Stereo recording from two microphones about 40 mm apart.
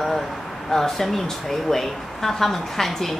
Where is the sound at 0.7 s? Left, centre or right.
Centre.